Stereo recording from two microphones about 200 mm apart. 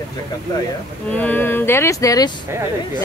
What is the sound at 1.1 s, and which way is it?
Speech, 5° left (ahead or behind).